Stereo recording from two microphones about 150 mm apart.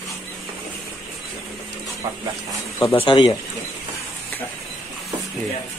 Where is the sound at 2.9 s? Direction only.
35° left (ahead or behind).